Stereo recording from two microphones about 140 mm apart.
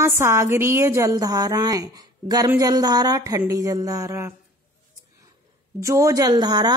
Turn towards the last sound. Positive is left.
turn(degrees=-30)  # may be behind; listen again after turning